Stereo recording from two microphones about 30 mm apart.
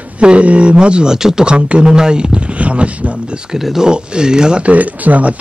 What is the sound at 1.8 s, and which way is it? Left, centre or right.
Speech, right.